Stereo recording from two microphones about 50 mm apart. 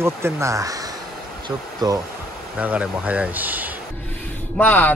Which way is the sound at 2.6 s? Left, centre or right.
Right.